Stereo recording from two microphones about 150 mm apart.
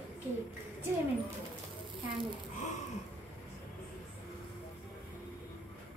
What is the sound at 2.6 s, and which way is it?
Gasp, 55° left (ahead or behind).